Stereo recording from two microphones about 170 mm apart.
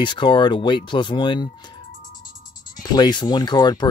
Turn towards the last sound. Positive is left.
turn(degrees=25)  # may be behind; listen again after turning